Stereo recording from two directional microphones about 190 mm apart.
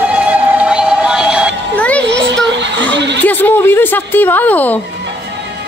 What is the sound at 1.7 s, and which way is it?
Music, 5° left (ahead or behind).